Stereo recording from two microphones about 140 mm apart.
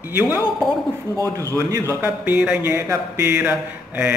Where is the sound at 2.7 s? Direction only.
20° right (ahead or behind).